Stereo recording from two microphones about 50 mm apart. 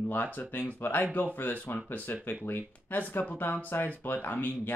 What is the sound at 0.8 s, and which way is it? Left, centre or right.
Speech, left.